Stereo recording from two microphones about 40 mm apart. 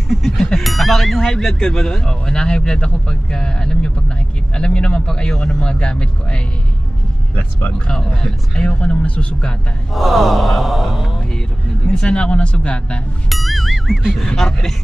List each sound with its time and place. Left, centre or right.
0.4 s speech: centre
0.7 s speech: centre
1.3 s speech: centre
8.0 s speech: centre
8.5 s speech: left
9.9 s sigh: centre
11.9 s speech: left
13.3 s music: centre
14.2 s speech: centre